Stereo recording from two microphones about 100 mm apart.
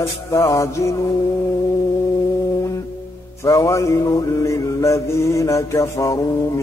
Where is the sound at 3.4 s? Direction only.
30° left (ahead or behind).